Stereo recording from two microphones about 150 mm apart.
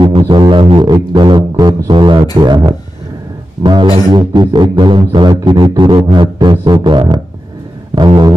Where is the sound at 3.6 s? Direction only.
30° right (ahead or behind).